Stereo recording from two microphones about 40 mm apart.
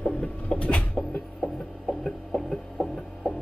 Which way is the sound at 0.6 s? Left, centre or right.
Left.